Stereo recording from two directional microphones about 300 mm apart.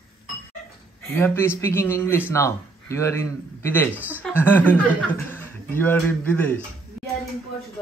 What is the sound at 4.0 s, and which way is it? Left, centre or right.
Speech, centre.